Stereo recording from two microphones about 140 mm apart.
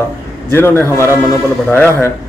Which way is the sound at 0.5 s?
15° left (ahead or behind).